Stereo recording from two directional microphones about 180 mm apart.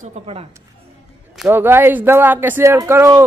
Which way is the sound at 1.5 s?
10° right (ahead or behind).